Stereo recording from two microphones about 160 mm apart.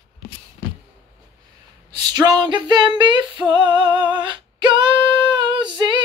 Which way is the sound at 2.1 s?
25° right (ahead or behind).